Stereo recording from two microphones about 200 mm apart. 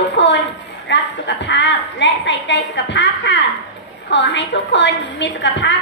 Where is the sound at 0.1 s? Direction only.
60° left (ahead or behind).